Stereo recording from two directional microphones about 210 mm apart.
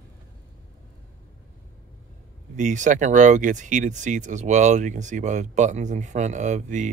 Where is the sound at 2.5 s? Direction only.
35° right (ahead or behind).